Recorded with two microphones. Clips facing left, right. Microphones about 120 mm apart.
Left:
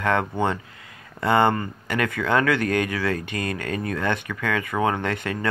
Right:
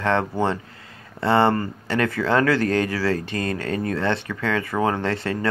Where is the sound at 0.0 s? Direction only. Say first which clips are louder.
Right 1 dB; 25° right (ahead or behind).